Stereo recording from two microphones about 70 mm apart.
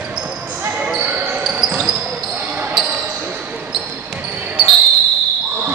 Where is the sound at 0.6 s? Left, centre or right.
Right.